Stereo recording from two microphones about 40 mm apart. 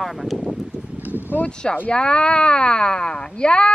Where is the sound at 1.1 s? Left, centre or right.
Left.